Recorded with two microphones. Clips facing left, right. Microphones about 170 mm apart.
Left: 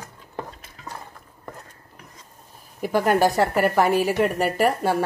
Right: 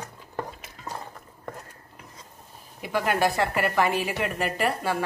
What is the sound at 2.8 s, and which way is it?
A woman's voice, 40° left (ahead or behind).